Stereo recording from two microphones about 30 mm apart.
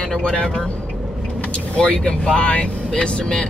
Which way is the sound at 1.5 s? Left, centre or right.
Left.